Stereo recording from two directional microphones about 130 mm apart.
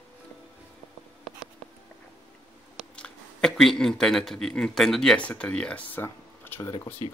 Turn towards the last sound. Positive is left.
turn(degrees=15)  # may be behind; listen again after turning